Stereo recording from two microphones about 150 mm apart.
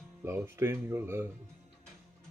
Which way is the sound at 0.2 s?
15° right (ahead or behind).